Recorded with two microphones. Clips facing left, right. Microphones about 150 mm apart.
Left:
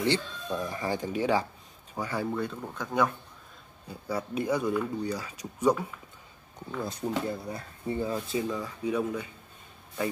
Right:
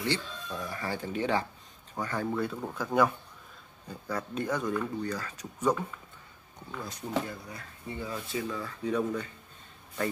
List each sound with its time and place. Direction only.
0.0 s speech: 20° left (ahead or behind)
2.3 s speech: 5° right (ahead or behind)
3.8 s speech: 10° left (ahead or behind)
6.8 s speech: 30° left (ahead or behind); by 9.3 s 10° left (ahead or behind)